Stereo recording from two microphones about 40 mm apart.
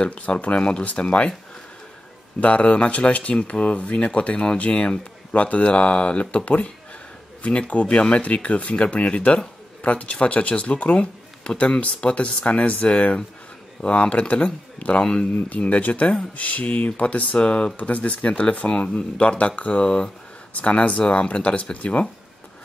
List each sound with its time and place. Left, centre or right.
0.0 s speech: left
0.6 s speech: left
2.4 s speech: left
18.7 s speech: left
19.8 s speech: left
20.5 s speech: left